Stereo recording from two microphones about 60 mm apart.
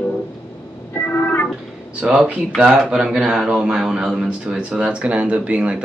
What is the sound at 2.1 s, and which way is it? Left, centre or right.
Speech, centre.